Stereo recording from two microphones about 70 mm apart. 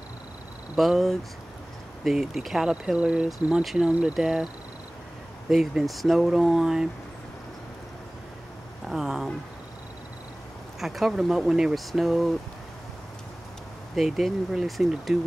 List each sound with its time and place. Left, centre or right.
0.7 s speech: centre
5.5 s speech: centre
8.8 s speech: centre
10.8 s speech: centre
13.9 s speech: centre